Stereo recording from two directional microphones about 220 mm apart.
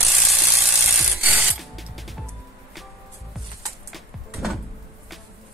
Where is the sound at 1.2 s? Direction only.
5° right (ahead or behind).